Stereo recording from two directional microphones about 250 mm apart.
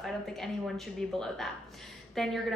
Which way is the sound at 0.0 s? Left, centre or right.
Centre.